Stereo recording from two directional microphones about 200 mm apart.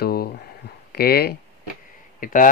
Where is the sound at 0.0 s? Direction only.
50° left (ahead or behind).